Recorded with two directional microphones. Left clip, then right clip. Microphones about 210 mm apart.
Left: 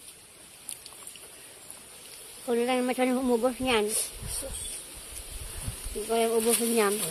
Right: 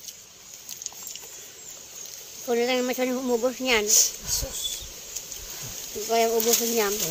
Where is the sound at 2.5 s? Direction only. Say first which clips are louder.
Right 3 dB; 5° left (ahead or behind).